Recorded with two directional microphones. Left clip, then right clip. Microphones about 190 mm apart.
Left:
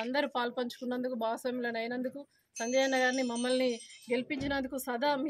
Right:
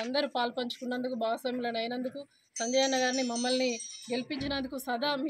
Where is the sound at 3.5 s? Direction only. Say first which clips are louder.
Even; 35° left (ahead or behind).